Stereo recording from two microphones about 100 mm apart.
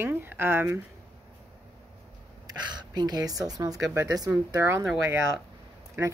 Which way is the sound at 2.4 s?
45° right (ahead or behind).